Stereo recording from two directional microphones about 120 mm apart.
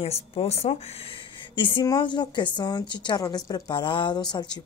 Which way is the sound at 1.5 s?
45° left (ahead or behind).